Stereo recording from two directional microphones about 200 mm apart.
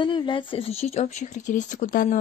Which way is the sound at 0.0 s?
25° left (ahead or behind).